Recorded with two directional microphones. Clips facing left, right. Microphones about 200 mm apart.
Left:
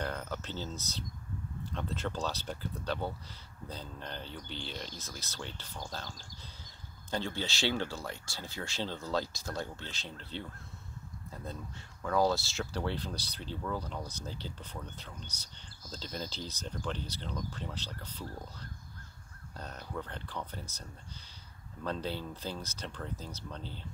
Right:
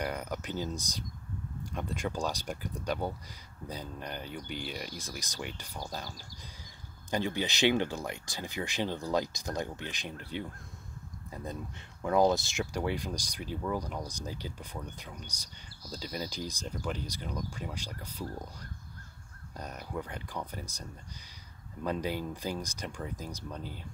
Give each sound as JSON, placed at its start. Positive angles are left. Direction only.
{"t": 0.0, "sound": "cricket", "side_deg": -15}
{"t": 1.6, "sound": "speech", "side_deg": -10}
{"t": 12.0, "sound": "speech", "side_deg": -20}
{"t": 21.8, "sound": "speech", "side_deg": -10}